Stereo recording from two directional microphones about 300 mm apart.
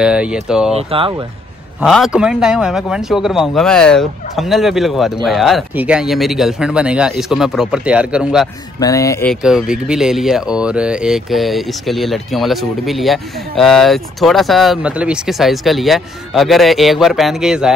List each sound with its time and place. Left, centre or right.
0.0 s speech: centre
0.7 s speech: centre
1.8 s speech: centre
8.7 s speech: centre